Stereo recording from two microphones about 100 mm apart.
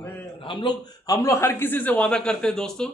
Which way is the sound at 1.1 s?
30° left (ahead or behind).